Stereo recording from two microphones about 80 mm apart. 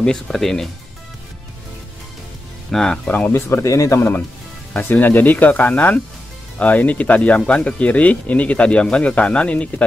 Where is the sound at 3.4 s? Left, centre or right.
Left.